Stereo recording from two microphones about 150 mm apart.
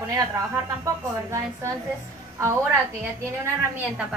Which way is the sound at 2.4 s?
20° right (ahead or behind).